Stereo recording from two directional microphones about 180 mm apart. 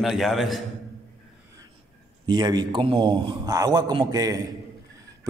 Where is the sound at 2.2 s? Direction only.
25° right (ahead or behind).